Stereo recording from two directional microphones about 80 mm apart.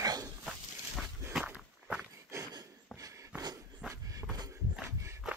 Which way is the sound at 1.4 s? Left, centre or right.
Centre.